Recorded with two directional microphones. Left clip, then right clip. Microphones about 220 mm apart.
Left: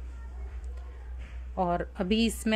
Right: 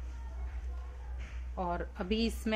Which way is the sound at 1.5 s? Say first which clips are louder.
Left 7 dB; 40° left (ahead or behind).